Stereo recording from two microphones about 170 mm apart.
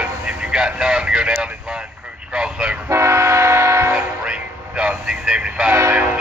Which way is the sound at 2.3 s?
5° right (ahead or behind).